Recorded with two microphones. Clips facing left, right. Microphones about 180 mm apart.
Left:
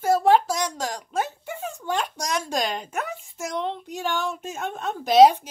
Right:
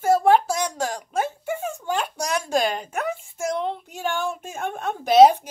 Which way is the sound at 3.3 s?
5° right (ahead or behind).